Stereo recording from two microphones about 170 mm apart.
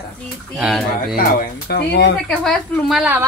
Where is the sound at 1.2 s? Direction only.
60° left (ahead or behind).